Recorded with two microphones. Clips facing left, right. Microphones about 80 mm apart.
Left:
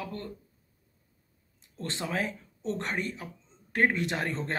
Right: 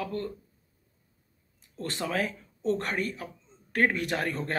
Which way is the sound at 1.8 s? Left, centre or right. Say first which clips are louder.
Right 2 dB; left.